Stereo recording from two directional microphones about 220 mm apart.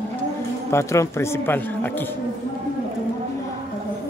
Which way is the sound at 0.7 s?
10° left (ahead or behind).